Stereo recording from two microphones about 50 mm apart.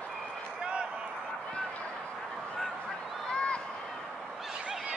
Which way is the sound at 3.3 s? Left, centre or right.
Left.